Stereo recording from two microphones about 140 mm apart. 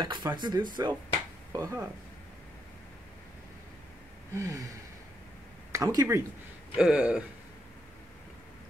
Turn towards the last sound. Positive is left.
turn(degrees=-5)  # may be behind; listen again after turning